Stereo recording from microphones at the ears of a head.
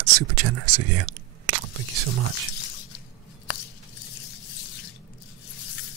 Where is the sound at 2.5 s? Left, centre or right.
Left.